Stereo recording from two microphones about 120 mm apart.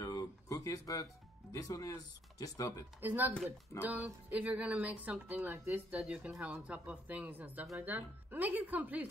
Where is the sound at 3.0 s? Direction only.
15° right (ahead or behind).